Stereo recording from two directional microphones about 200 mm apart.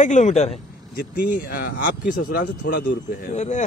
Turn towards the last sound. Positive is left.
turn(degrees=35)  # may be behind; listen again after turning